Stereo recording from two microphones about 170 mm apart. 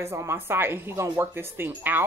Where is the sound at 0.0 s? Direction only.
15° right (ahead or behind).